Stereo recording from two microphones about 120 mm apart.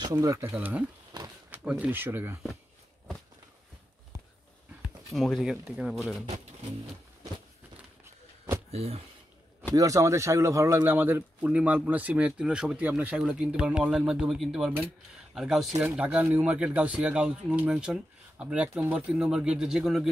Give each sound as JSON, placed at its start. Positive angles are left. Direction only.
{"t": 0.4, "sound": "speech", "side_deg": -15}
{"t": 1.1, "sound": "a sound", "side_deg": -35}
{"t": 1.5, "sound": "speech", "side_deg": -10}
{"t": 5.1, "sound": "speech", "side_deg": 0}
{"t": 8.7, "sound": "speech", "side_deg": -55}
{"t": 9.8, "sound": "speech", "side_deg": -30}
{"t": 10.8, "sound": "speech", "side_deg": -15}